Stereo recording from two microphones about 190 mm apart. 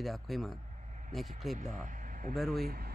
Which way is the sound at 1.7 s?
40° right (ahead or behind).